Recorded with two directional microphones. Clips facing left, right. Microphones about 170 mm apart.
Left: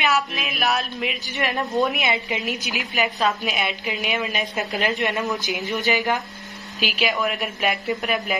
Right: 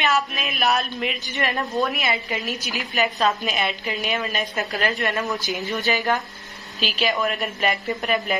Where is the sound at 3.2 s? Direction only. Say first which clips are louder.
Right 1 dB; centre (ahead or behind).